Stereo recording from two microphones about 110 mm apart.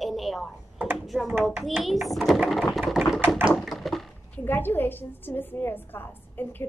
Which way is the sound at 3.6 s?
Centre (ahead or behind).